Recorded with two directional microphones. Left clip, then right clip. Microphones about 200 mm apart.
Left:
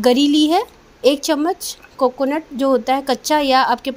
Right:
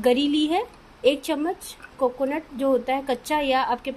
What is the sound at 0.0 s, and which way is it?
A woman's voice, 35° left (ahead or behind).